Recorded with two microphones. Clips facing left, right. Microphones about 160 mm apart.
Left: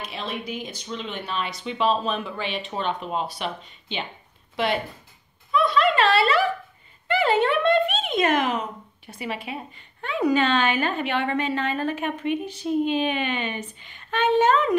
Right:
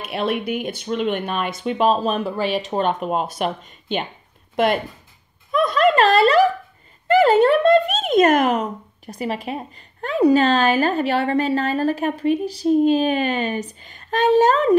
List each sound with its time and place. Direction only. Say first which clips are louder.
0.0 s speech: right 9 dB; 60° right (ahead or behind)
5.5 s a sound: right 4 dB; 45° right (ahead or behind)
7.1 s speech: right 7 dB; 40° right (ahead or behind)